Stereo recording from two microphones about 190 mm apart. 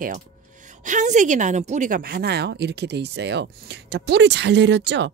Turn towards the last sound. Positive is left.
turn(degrees=-65)  # may be behind; listen again after turning